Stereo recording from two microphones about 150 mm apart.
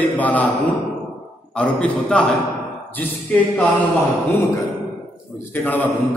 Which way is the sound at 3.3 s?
10° left (ahead or behind).